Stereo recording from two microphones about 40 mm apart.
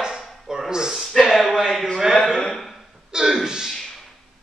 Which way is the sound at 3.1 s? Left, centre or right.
Centre.